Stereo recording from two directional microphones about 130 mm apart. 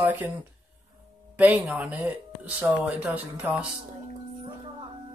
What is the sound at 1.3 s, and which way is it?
Speech, 10° right (ahead or behind).